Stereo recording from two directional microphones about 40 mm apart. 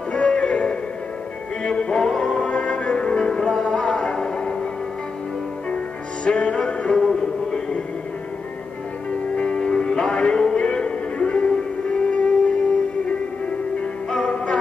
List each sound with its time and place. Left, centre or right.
0.1 s music: left; by 2.4 s centre
2.4 s music: left
6.2 s music: left
7.0 s music: centre
9.4 s music: left
14.2 s music: left